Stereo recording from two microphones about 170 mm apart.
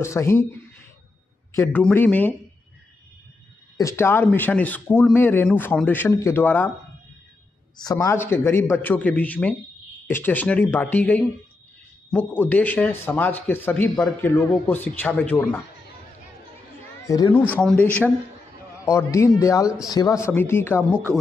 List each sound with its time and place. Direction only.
0.0 s a man's voice: 15° left (ahead or behind)
3.7 s a man's voice: 15° left (ahead or behind)
7.8 s a man's voice: 20° left (ahead or behind)
17.0 s a man's voice: 20° left (ahead or behind)
20.9 s speech: 15° right (ahead or behind)